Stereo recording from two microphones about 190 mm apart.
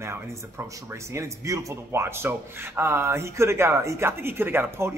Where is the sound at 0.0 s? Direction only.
15° right (ahead or behind).